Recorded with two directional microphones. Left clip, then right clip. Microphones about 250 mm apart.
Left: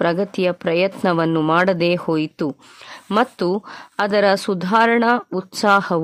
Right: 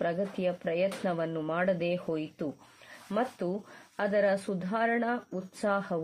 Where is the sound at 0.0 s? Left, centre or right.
Left.